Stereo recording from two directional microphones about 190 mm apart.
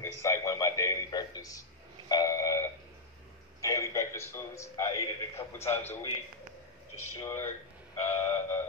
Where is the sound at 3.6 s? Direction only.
15° left (ahead or behind).